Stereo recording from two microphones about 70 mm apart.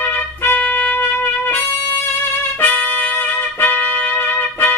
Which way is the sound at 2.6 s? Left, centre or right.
Left.